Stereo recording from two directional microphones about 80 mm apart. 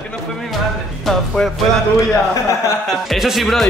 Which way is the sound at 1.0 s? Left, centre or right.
Centre.